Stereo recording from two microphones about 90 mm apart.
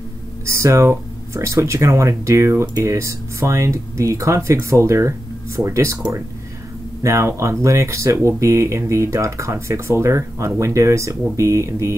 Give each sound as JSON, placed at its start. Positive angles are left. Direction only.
{"t": 0.5, "sound": "speech", "side_deg": -35}